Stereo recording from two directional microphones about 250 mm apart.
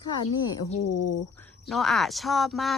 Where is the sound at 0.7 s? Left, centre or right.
Left.